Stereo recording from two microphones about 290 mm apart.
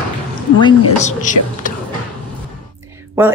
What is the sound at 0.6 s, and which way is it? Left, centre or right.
Speech, centre.